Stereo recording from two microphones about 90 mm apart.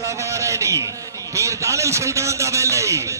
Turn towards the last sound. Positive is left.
turn(degrees=-35)  # may be behind; listen again after turning